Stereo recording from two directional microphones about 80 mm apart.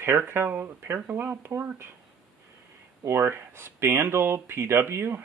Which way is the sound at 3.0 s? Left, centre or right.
Right.